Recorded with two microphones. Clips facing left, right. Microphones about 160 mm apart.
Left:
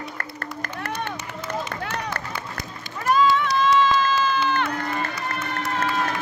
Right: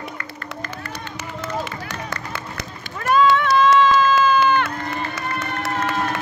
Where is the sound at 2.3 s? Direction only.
75° right (ahead or behind); by 4.6 s 55° right (ahead or behind).